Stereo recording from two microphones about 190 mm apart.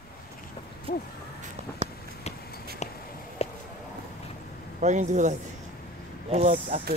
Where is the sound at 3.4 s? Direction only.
35° left (ahead or behind).